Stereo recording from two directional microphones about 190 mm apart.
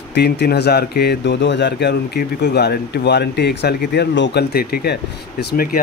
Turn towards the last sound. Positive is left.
turn(degrees=60)  # may be behind; listen again after turning